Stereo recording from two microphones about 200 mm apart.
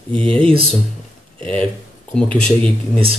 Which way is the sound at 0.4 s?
25° right (ahead or behind).